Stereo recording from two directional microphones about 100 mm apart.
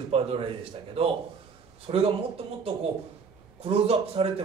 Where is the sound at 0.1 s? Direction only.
65° right (ahead or behind).